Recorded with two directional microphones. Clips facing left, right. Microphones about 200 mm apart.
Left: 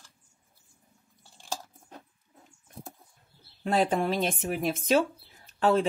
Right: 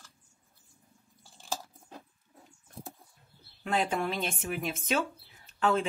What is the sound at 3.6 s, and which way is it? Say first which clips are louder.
Speech: left 5 dB; 35° left (ahead or behind).